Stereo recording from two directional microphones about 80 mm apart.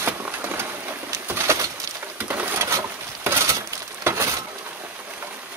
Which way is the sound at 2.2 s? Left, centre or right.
Right.